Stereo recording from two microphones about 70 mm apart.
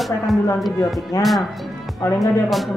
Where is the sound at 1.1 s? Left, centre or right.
Left.